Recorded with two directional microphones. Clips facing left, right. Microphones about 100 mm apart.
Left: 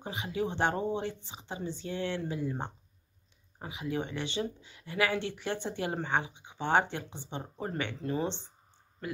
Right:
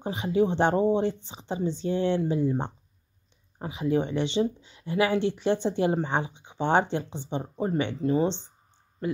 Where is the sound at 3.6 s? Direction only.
30° right (ahead or behind).